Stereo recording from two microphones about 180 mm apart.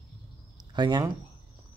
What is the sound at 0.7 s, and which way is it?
Speech, 25° right (ahead or behind).